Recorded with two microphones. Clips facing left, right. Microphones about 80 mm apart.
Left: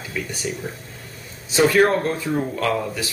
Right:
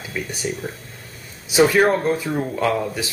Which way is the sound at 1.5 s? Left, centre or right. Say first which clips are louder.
Right 1 dB; centre.